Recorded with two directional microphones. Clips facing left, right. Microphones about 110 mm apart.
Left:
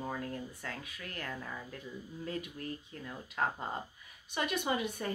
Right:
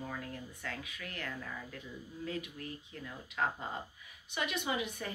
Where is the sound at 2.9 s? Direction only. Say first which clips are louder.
Left 2 dB; 40° left (ahead or behind).